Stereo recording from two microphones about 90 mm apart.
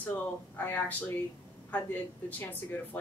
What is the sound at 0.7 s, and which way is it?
Speech, 20° left (ahead or behind).